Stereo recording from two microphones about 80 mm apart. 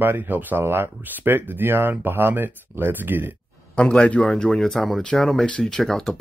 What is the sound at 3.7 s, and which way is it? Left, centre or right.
A man's voice, centre.